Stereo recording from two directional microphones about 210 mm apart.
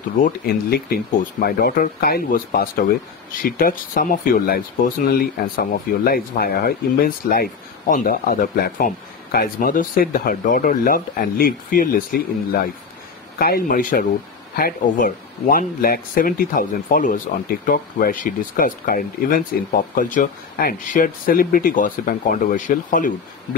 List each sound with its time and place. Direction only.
0.2 s speech: 45° left (ahead or behind)